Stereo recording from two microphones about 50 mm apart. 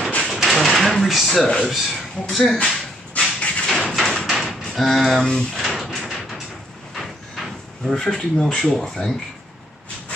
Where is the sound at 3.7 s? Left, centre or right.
Centre.